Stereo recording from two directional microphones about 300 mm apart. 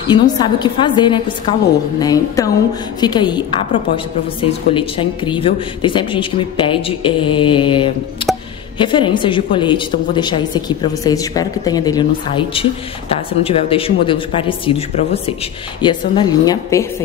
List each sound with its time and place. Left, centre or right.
0.0 s a woman's voice: centre
15.8 s a woman's voice: centre